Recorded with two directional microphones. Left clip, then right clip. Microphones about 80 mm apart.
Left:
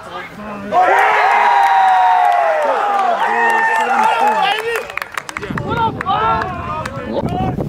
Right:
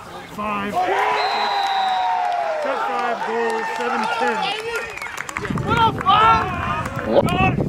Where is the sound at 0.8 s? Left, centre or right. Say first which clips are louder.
Left 9 dB; left.